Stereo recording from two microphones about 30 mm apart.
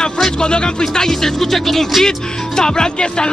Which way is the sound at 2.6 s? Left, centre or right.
Left.